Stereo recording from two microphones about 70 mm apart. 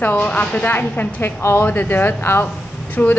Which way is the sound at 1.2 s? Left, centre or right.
Left.